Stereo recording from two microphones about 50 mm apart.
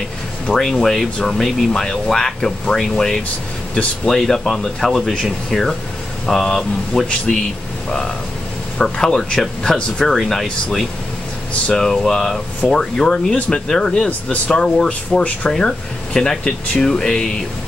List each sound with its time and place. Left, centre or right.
0.5 s speech: centre
8.8 s speech: centre
10.0 s speech: centre
14.9 s speech: left
15.6 s speech: centre